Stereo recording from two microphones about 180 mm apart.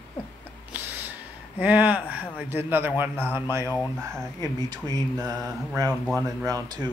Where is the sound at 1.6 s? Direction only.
10° right (ahead or behind).